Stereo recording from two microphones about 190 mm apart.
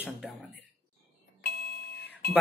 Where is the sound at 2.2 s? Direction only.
55° left (ahead or behind).